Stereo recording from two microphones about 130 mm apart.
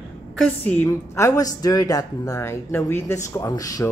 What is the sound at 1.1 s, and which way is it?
Speech, 25° left (ahead or behind).